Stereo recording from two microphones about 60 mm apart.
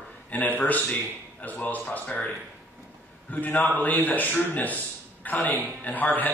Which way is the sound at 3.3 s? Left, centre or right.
Left.